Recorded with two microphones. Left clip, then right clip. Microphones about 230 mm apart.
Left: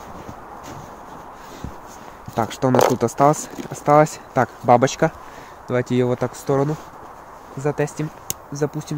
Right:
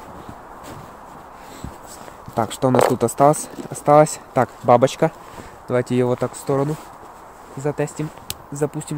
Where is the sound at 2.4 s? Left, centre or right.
Centre.